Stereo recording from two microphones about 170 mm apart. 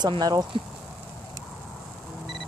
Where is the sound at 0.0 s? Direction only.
25° right (ahead or behind).